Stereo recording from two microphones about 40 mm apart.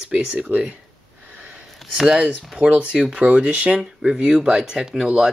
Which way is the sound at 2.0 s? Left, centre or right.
Centre.